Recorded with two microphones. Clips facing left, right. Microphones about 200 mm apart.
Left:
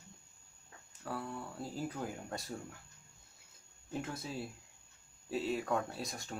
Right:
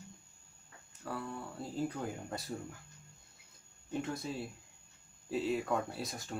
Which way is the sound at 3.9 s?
Centre (ahead or behind).